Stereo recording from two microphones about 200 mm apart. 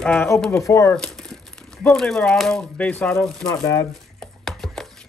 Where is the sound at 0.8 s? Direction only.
5° left (ahead or behind).